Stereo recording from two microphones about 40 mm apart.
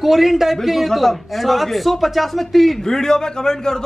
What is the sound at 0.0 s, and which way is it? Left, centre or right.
A man's voice, centre.